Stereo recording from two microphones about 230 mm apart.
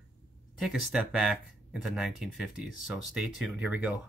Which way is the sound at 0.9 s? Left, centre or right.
Centre.